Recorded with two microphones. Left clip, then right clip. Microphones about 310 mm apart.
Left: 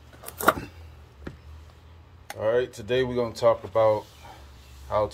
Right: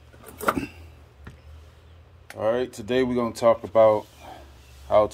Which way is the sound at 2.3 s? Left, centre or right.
Centre.